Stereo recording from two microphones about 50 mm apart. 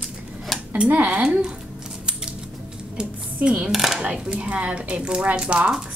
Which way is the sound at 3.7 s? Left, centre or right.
Centre.